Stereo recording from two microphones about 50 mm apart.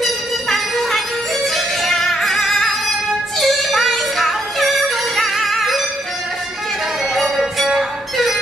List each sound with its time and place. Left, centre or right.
0.0 s music: centre
7.2 s music: centre